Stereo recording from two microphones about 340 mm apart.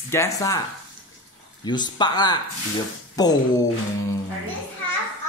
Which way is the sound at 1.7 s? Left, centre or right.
Centre.